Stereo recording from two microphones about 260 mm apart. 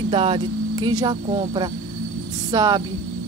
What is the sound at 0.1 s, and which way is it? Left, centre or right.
Speech, centre.